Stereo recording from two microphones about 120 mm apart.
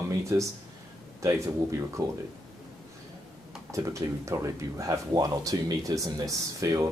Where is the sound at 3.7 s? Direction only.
25° right (ahead or behind).